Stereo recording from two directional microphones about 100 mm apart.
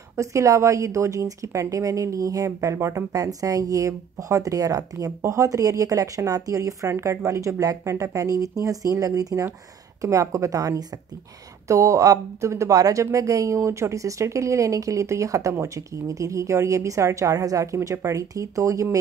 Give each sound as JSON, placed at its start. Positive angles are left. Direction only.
{"t": 0.1, "sound": "a woman's voice", "side_deg": -30}